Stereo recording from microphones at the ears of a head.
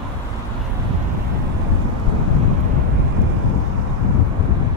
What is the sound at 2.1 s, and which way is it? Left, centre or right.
Vehicle, left.